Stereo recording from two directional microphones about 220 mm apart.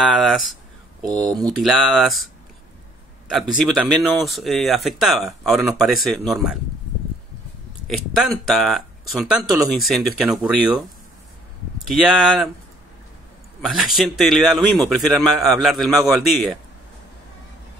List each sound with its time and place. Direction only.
0.0 s speech: centre (ahead or behind)
1.0 s speech: 15° right (ahead or behind)
1.6 s speech: centre (ahead or behind)
3.3 s speech: centre (ahead or behind)
7.8 s speech: centre (ahead or behind)
11.9 s speech: centre (ahead or behind)
13.6 s speech: centre (ahead or behind)